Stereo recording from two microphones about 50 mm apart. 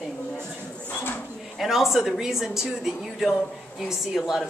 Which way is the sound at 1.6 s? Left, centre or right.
Centre.